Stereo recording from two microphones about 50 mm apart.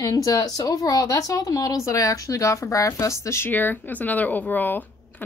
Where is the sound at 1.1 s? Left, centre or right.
Left.